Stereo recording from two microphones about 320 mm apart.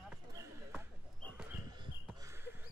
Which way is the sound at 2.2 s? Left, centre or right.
Centre.